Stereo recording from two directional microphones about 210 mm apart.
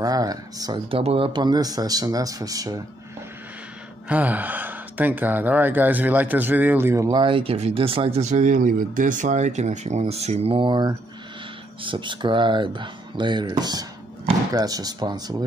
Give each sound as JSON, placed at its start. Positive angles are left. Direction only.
{"t": 0.0, "sound": "speech", "side_deg": -15}
{"t": 4.1, "sound": "speech", "side_deg": -5}